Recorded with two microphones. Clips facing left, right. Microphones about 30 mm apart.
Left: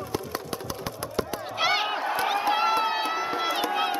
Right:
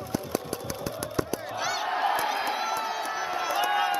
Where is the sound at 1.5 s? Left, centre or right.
Left.